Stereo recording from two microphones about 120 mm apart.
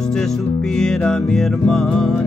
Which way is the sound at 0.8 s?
5° left (ahead or behind).